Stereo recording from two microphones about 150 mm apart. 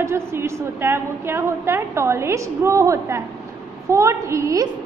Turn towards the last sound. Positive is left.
turn(degrees=-20)  # may be behind; listen again after turning